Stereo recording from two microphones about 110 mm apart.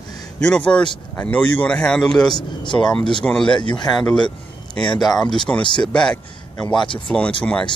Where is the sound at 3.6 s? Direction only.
40° left (ahead or behind).